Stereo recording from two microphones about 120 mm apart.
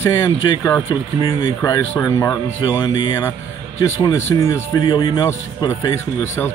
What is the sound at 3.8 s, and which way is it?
Speech, 25° left (ahead or behind).